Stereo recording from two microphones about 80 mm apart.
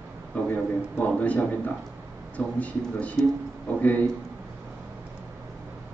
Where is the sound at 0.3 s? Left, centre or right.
Centre.